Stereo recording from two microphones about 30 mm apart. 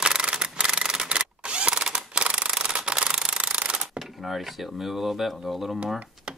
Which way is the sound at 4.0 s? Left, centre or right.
Centre.